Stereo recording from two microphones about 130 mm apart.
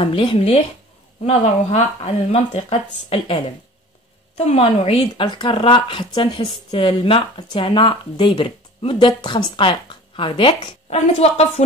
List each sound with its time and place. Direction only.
0.0 s speech: 45° left (ahead or behind)